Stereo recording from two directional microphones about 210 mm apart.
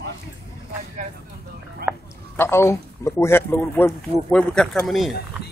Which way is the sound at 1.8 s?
45° right (ahead or behind).